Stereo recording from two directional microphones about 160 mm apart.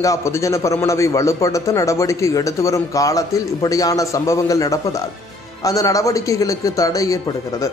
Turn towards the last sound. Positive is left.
turn(degrees=20)  # may be behind; listen again after turning